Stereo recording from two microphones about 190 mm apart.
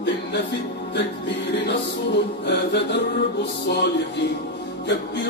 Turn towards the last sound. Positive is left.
turn(degrees=65)  # may be behind; listen again after turning